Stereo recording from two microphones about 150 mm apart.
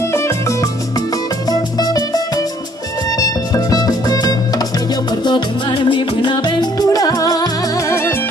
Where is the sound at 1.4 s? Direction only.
25° left (ahead or behind).